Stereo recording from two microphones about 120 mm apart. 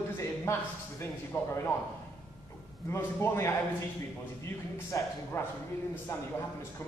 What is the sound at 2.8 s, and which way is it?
Speech, 20° left (ahead or behind).